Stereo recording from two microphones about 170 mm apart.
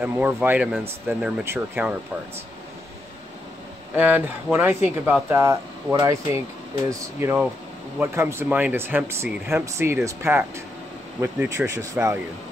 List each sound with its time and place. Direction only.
0.0 s speech: 10° right (ahead or behind)
3.9 s speech: 10° right (ahead or behind)